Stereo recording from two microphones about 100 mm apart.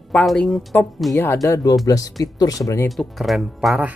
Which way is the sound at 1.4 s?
35° left (ahead or behind).